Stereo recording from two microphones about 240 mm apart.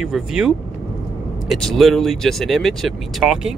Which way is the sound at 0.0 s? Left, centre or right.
Centre.